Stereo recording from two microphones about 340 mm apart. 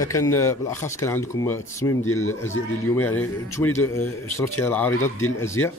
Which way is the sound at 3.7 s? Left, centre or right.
Centre.